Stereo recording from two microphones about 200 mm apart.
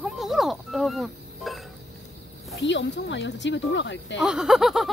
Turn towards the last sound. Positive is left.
turn(degrees=0)  # may be behind; listen again after turning